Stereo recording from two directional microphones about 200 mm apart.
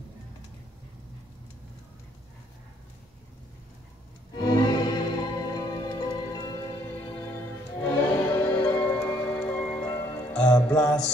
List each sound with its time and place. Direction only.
4.4 s music: 20° left (ahead or behind)